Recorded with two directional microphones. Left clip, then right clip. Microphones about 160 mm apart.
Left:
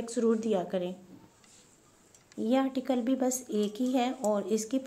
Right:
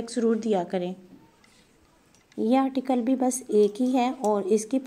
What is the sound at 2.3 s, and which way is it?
A woman's voice, 25° right (ahead or behind).